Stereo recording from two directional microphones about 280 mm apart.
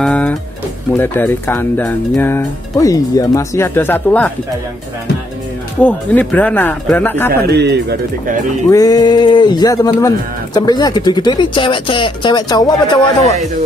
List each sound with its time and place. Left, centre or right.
0.0 s music: centre
0.9 s speech: centre
5.8 s speech: centre
7.4 s speech: right
8.6 s speech: centre